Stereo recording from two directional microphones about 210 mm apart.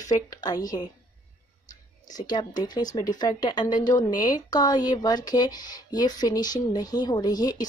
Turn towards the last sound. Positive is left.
turn(degrees=20)  # may be behind; listen again after turning